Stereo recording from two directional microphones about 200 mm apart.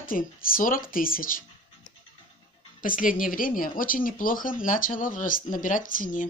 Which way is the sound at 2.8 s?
45° left (ahead or behind).